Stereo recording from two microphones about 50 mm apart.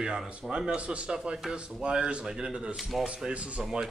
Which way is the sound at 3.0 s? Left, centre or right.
Right.